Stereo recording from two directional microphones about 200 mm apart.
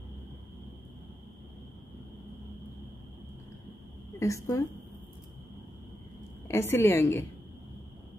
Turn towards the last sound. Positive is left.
turn(degrees=15)  # may be behind; listen again after turning